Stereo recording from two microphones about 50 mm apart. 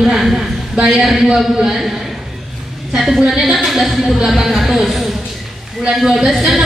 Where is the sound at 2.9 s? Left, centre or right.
Centre.